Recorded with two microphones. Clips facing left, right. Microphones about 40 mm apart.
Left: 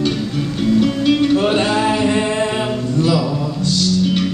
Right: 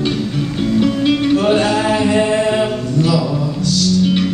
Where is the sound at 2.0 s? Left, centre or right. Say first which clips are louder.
Right 3 dB; centre.